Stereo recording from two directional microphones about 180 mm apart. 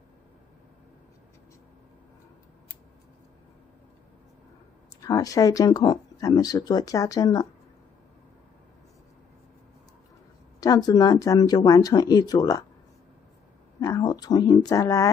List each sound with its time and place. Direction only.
5.0 s speech: 20° left (ahead or behind)
10.6 s speech: 20° left (ahead or behind)
13.7 s speech: 20° left (ahead or behind)